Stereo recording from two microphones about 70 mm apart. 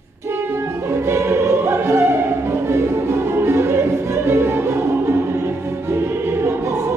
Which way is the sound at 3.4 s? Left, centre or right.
Right.